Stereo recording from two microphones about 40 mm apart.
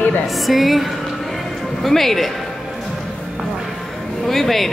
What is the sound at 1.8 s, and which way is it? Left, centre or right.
Speech, centre.